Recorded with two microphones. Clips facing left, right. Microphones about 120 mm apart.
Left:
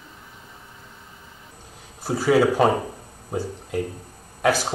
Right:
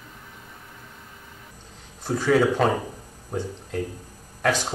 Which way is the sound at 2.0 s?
5° left (ahead or behind).